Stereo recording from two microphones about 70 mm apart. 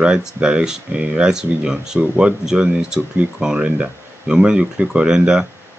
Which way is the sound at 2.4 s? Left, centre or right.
Centre.